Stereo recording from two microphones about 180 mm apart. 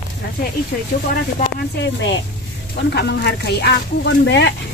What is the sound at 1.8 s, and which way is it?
Speech, 80° left.